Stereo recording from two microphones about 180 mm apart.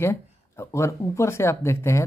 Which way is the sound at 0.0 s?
15° left (ahead or behind).